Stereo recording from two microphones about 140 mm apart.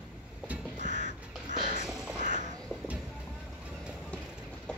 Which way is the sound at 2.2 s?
65° right (ahead or behind).